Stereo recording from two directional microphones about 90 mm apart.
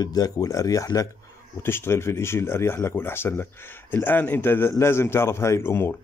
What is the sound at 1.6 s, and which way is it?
Speech, 25° left (ahead or behind).